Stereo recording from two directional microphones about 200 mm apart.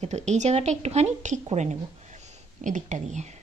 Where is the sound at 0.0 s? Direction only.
35° right (ahead or behind).